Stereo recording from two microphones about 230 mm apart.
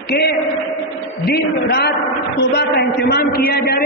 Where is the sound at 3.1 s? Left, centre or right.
Left.